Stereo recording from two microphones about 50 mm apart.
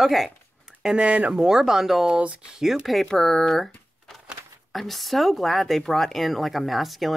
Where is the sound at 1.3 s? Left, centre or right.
Centre.